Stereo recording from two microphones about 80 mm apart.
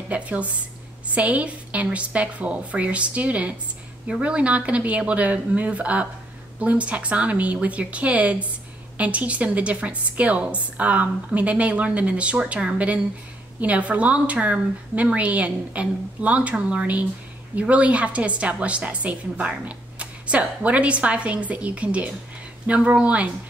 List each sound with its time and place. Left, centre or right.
0.1 s a woman's voice: centre